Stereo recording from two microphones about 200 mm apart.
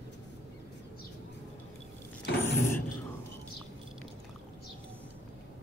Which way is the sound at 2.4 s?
10° left (ahead or behind).